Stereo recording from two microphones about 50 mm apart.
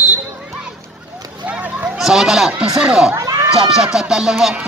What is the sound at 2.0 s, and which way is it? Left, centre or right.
Speech, centre.